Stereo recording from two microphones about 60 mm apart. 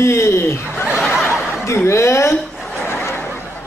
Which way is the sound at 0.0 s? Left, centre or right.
Left.